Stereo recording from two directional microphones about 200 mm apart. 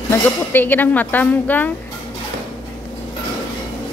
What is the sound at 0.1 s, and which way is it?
Speech, 10° left (ahead or behind).